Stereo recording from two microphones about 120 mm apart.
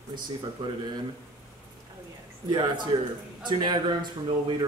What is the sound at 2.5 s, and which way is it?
Speech, 40° right (ahead or behind).